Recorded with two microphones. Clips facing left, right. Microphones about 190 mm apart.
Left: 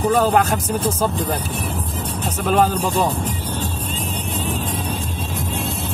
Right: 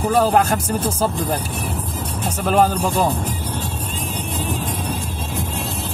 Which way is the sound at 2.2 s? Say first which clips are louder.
Right 1 dB; centre (ahead or behind).